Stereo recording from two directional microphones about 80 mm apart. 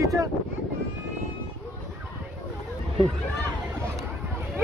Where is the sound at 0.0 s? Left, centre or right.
Right.